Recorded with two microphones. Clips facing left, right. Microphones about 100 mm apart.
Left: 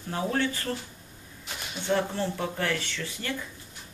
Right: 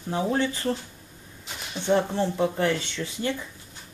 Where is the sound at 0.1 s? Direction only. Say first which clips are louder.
Right 3 dB; 20° right (ahead or behind).